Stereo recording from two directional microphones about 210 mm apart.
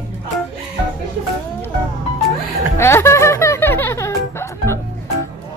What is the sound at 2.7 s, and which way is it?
Music, 10° left (ahead or behind).